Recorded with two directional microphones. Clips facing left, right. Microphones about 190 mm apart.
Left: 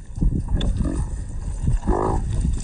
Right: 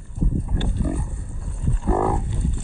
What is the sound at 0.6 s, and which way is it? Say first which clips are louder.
Livestock: even; 40° left (ahead or behind).